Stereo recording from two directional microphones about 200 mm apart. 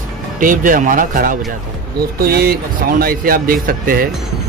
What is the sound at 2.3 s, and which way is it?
Speech, 50° right (ahead or behind).